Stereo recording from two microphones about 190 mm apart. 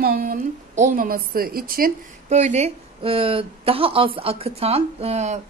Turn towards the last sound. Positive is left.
turn(degrees=-35)  # may be behind; listen again after turning